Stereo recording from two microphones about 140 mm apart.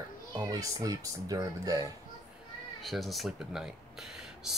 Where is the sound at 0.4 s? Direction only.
25° right (ahead or behind).